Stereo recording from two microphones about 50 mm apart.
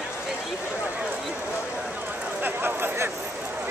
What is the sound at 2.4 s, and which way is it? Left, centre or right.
Speech, right.